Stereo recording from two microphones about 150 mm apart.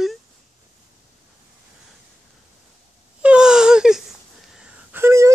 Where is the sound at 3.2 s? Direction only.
5° right (ahead or behind).